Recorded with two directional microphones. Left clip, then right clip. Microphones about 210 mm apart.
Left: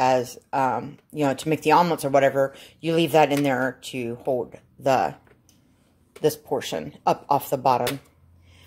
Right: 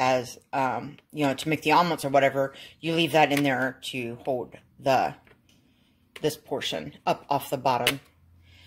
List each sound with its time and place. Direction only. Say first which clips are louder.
0.0 s speech: left 4 dB; 10° left (ahead or behind)
6.1 s speech: left 5 dB; 10° left (ahead or behind)